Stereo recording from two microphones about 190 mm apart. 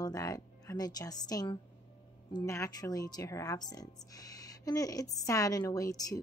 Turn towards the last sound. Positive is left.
turn(degrees=20)  # may be behind; listen again after turning